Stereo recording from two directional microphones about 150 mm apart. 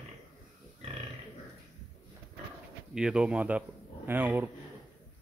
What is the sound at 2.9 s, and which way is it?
A man's voice, 5° right (ahead or behind).